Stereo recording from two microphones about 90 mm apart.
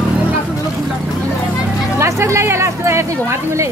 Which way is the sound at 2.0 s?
30° right (ahead or behind).